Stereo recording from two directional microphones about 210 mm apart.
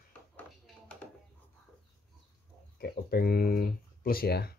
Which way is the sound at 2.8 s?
45° left (ahead or behind).